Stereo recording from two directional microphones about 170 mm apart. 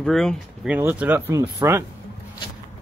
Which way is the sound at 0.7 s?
10° right (ahead or behind).